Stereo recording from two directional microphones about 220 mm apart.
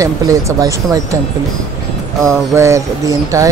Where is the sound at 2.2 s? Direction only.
10° right (ahead or behind).